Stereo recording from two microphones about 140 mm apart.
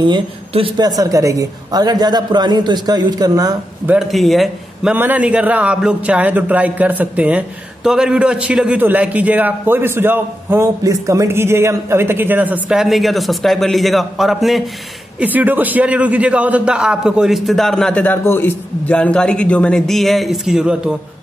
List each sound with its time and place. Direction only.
0.0 s speech: 40° right (ahead or behind)
0.8 s a man's voice: 25° right (ahead or behind)
3.8 s a man's voice: 5° right (ahead or behind)
4.9 s a man's voice: 15° right (ahead or behind)
15.1 s a man's voice: 10° right (ahead or behind)